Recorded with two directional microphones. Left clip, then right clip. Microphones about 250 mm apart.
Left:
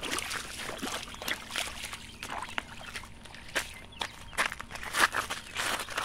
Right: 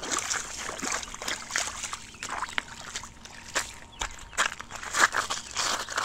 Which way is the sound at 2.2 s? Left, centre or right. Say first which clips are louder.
Right 5 dB; centre.